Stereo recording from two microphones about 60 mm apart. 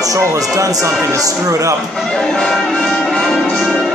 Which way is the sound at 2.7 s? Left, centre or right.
Centre.